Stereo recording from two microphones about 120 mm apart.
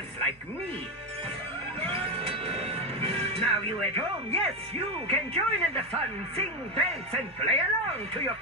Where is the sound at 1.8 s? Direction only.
55° right (ahead or behind).